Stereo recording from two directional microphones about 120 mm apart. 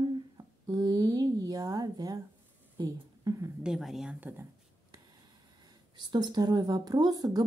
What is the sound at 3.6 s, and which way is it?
Speech, 5° right (ahead or behind).